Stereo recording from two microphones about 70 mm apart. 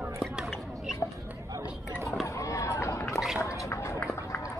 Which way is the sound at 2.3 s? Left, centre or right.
Left.